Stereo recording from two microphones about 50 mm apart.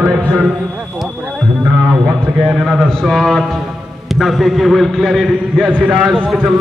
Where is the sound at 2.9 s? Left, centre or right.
Centre.